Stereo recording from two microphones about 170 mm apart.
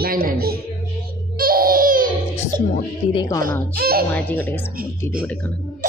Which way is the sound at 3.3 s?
15° left (ahead or behind).